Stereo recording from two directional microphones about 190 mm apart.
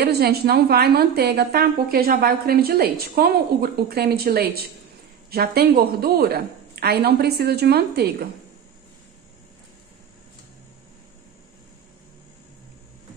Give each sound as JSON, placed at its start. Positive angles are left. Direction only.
{"t": 0.0, "sound": "a woman's voice", "side_deg": -55}